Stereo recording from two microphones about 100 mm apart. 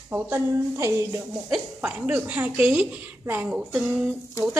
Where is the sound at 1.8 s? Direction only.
15° right (ahead or behind).